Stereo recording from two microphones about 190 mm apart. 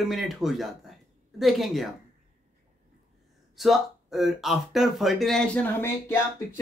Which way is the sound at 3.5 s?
Centre (ahead or behind).